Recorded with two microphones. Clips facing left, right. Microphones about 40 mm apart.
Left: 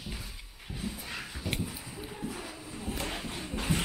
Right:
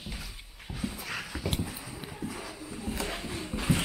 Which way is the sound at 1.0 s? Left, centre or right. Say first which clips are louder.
Right 3 dB; right.